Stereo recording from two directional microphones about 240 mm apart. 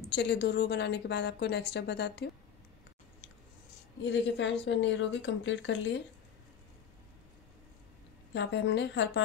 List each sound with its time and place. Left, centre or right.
0.1 s a woman's voice: left
4.0 s a woman's voice: left
8.3 s a woman's voice: left